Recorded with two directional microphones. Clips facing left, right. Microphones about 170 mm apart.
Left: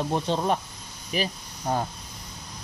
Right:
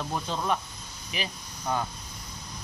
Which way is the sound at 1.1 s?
35° left (ahead or behind).